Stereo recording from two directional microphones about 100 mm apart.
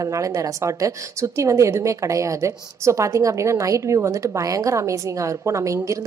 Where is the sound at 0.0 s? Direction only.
30° right (ahead or behind).